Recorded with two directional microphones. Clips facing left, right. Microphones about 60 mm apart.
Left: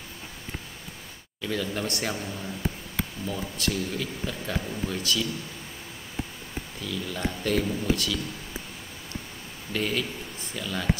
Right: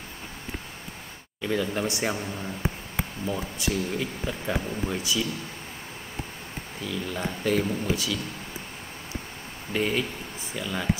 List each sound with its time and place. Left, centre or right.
1.4 s speech: centre
6.8 s speech: centre
9.7 s speech: centre